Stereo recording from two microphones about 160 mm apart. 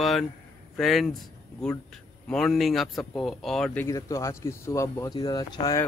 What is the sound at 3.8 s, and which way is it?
Speech, 20° left (ahead or behind).